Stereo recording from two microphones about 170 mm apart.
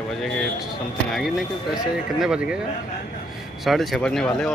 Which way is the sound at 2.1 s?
5° right (ahead or behind).